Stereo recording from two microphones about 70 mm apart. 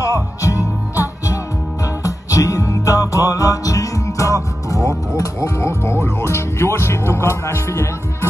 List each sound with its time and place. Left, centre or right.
0.0 s music: left